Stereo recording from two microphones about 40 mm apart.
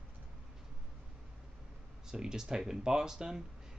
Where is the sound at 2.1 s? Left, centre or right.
Centre.